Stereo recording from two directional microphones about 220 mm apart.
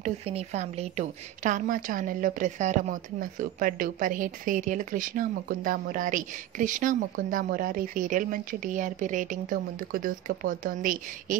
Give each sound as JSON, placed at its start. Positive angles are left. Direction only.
{"t": 0.0, "sound": "a woman's voice", "side_deg": -30}